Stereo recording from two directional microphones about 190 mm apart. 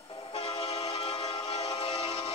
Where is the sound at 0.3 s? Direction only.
30° left (ahead or behind).